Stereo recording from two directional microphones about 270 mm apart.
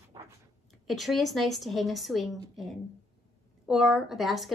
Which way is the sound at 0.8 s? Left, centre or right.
Centre.